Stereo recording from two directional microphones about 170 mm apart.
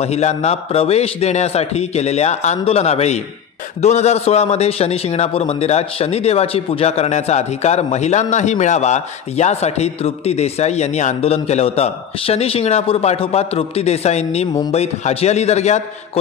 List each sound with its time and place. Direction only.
0.0 s a man's voice: 40° left (ahead or behind)